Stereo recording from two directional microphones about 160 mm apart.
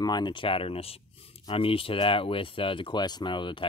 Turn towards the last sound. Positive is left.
turn(degrees=30)  # may be behind; listen again after turning